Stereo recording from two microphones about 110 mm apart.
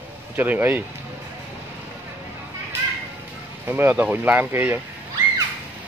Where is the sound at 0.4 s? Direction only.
15° right (ahead or behind).